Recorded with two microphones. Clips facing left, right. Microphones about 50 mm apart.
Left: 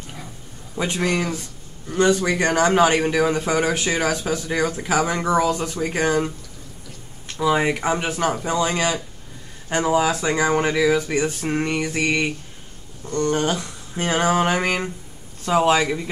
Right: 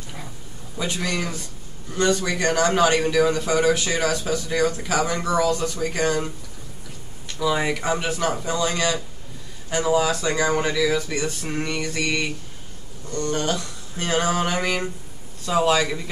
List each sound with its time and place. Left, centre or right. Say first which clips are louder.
0.7 s a man's voice: left 4 dB; left